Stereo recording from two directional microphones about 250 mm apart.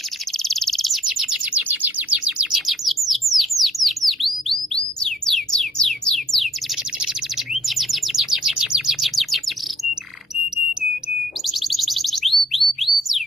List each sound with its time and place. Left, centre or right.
0.4 s bird: centre
7.6 s bird: centre
11.4 s a sound: centre